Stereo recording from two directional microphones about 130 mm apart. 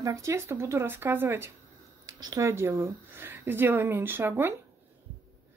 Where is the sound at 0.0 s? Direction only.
25° right (ahead or behind).